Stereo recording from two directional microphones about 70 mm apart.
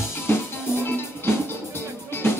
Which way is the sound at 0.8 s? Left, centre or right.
Left.